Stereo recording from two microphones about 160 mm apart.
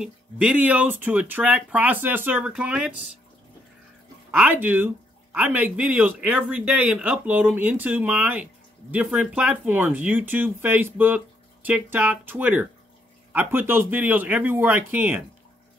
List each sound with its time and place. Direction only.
0.0 s speech: 10° right (ahead or behind)
4.3 s speech: 10° right (ahead or behind)